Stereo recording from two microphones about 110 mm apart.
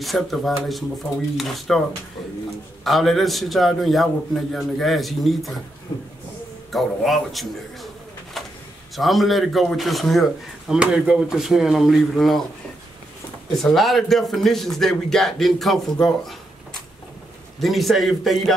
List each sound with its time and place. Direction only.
0.0 s speech: centre (ahead or behind)
2.8 s speech: centre (ahead or behind)
6.7 s speech: centre (ahead or behind)
8.4 s vehicle: centre (ahead or behind)
8.9 s speech: centre (ahead or behind)
13.6 s speech: centre (ahead or behind)
17.6 s speech: centre (ahead or behind)